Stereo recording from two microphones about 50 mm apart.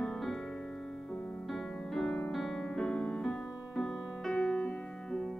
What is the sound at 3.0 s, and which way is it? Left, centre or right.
Music, left.